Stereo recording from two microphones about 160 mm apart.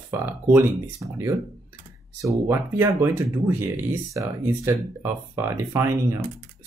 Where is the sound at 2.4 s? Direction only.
15° right (ahead or behind).